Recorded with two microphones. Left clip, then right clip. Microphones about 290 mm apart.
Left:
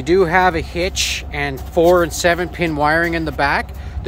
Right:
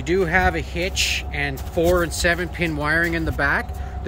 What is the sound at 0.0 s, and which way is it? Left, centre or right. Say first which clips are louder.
Speech: left 6 dB; centre.